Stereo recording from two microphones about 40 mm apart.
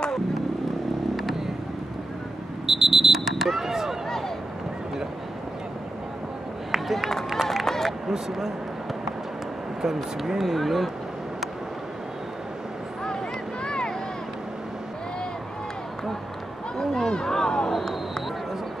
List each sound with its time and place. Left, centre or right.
2.6 s vehicle: centre
6.7 s run: centre
7.6 s run: centre
8.1 s speech: centre
10.2 s speech: centre
13.7 s boat: centre
16.7 s a sound: centre